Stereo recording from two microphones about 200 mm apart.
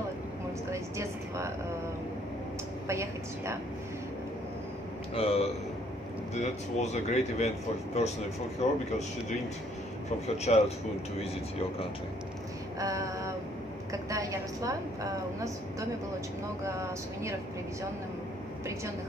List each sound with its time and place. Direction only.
0.7 s a woman's voice: 15° right (ahead or behind)
2.9 s a woman's voice: 15° right (ahead or behind)
5.1 s a man's voice: 30° left (ahead or behind)
10.2 s speech: 30° left (ahead or behind)
12.7 s female singing: 15° right (ahead or behind)
14.0 s a woman's voice: 15° right (ahead or behind)
16.6 s a woman's voice: 15° right (ahead or behind)